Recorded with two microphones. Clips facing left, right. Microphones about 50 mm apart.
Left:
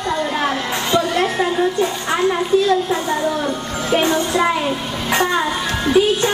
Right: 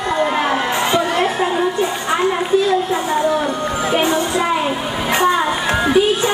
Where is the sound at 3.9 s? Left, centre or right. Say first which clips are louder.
Left 2 dB; centre.